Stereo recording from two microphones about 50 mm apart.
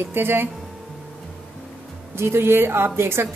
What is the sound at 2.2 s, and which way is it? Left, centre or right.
A woman's voice, right.